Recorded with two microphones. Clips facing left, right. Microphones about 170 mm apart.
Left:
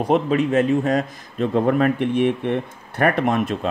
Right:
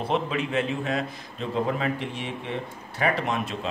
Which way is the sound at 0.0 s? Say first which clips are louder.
Left 8 dB; 45° left (ahead or behind).